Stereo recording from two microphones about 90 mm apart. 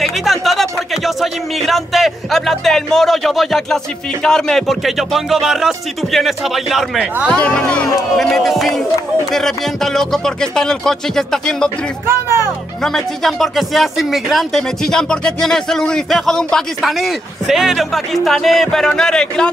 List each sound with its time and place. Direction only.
0.0 s speech: centre (ahead or behind)
7.2 s speech: 10° left (ahead or behind)
12.1 s speech: 30° right (ahead or behind)
12.8 s speech: 5° left (ahead or behind)